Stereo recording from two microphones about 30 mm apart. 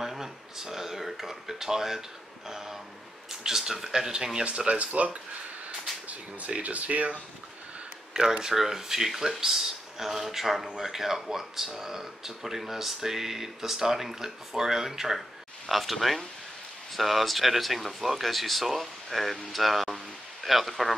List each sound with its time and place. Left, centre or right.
0.0 s speech: centre
4.5 s speech: right
6.0 s speech: right
8.1 s speech: centre
15.7 s speech: centre